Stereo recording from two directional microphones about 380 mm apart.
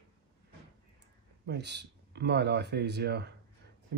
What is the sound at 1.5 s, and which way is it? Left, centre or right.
Speech, right.